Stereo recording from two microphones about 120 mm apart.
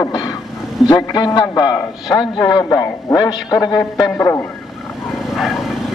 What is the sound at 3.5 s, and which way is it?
Speech, 30° left (ahead or behind).